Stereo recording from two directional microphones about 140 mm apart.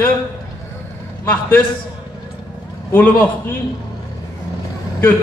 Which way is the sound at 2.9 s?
15° left (ahead or behind).